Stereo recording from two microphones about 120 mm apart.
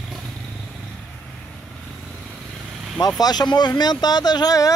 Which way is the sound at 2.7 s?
Centre (ahead or behind).